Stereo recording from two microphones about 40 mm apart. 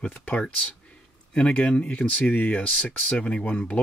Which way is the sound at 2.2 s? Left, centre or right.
Left.